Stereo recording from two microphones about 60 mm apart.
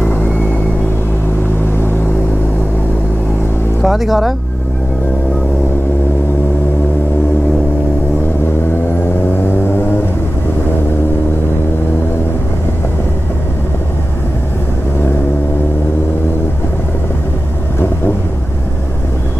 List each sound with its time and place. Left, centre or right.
3.8 s speech: centre
9.0 s vehicle: left